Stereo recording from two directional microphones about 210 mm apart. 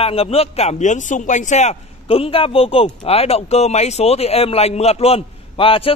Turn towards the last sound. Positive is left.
turn(degrees=25)  # may be behind; listen again after turning